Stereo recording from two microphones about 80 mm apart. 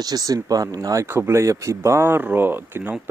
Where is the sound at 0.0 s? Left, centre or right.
Right.